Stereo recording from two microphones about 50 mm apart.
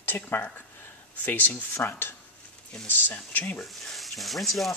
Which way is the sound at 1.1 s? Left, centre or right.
Left.